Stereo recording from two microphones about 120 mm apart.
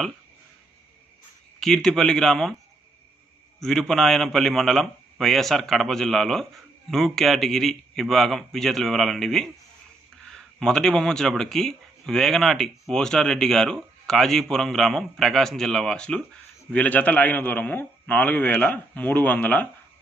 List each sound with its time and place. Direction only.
1.6 s speech: 5° left (ahead or behind)
3.5 s speech: 5° left (ahead or behind)